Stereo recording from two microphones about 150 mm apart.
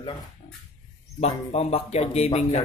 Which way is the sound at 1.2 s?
45° left (ahead or behind).